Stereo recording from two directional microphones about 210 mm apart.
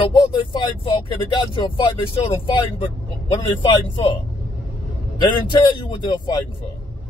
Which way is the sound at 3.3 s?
20° left (ahead or behind).